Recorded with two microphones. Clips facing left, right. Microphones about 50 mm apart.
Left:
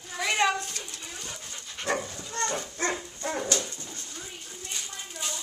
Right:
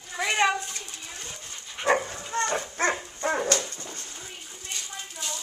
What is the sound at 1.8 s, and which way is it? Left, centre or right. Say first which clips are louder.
Dog: right 6 dB; right.